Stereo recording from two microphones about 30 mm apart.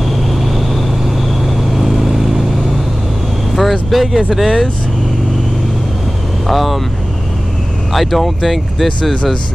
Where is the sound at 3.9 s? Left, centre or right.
Centre.